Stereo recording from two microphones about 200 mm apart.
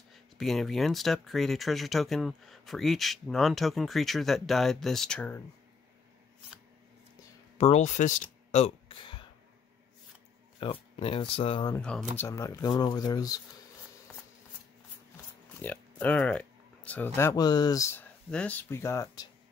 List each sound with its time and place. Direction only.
0.1 s speech: centre (ahead or behind)
7.5 s speech: 30° left (ahead or behind)
10.6 s speech: 25° left (ahead or behind)
11.7 s speech: 5° left (ahead or behind)
15.6 s speech: 10° left (ahead or behind)